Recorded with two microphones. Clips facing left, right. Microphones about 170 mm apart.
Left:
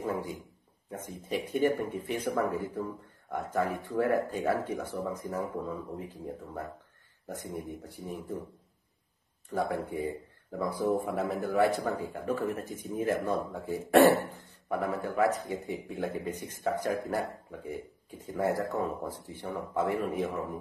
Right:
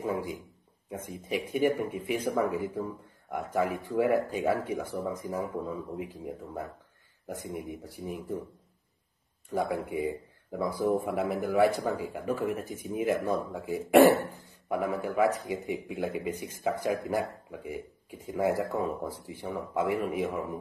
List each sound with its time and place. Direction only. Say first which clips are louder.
0.0 s speech: right 2 dB; 15° right (ahead or behind)
3.9 s speech: right 2 dB; 10° right (ahead or behind)
9.5 s speech: right 1 dB; 10° right (ahead or behind)